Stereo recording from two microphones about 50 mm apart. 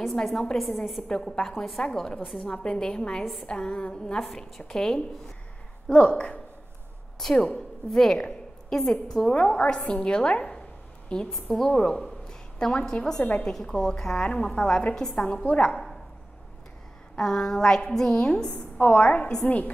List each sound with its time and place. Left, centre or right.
0.0 s a woman's voice: centre; by 6.4 s left
7.2 s a woman's voice: centre
15.4 s a woman's voice: left
17.1 s a woman's voice: centre
18.1 s a woman's voice: left